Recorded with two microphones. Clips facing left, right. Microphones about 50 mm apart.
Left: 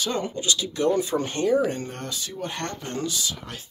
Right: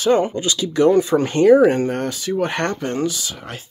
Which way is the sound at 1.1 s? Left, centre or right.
Right.